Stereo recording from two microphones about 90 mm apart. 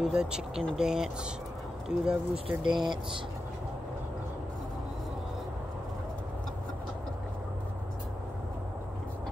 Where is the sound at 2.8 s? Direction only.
55° right (ahead or behind).